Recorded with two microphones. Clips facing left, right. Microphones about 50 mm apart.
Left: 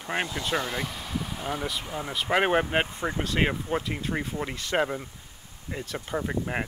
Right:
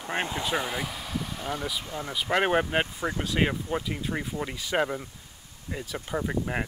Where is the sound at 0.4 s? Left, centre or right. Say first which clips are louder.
Even; centre.